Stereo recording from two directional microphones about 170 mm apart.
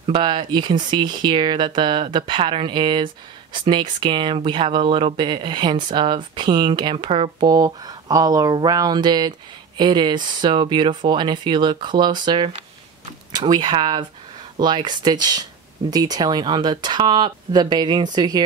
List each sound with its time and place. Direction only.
0.0 s speech: 30° right (ahead or behind)